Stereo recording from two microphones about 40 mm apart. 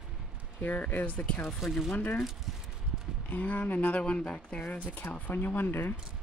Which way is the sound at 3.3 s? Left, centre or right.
Left.